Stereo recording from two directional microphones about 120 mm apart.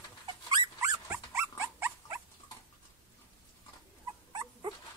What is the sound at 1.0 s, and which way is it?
Dog, 20° right (ahead or behind).